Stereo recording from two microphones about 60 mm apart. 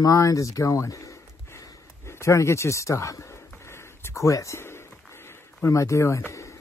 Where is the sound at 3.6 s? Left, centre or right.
Left.